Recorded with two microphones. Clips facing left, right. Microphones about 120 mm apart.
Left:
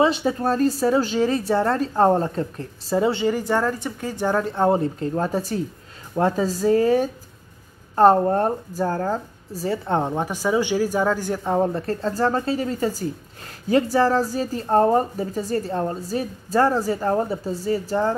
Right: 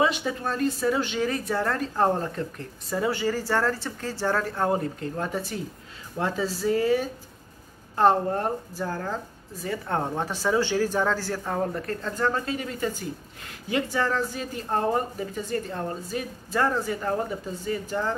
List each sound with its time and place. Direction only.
0.0 s a woman's voice: 30° left (ahead or behind)
9.8 s a woman's voice: 20° left (ahead or behind); by 18.1 s 35° left (ahead or behind)